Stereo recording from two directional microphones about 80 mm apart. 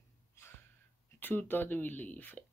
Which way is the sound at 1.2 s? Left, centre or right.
Left.